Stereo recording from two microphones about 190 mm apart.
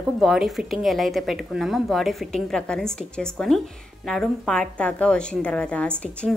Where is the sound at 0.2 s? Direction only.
Centre (ahead or behind).